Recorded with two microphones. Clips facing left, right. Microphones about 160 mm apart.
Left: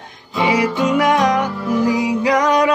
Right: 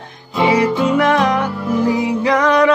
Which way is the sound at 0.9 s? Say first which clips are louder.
Left 2 dB; 15° left (ahead or behind).